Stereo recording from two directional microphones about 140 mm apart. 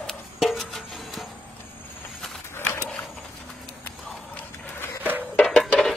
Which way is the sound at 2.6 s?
15° left (ahead or behind).